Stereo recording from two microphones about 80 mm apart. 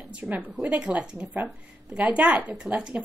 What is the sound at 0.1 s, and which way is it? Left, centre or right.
A woman's voice, centre.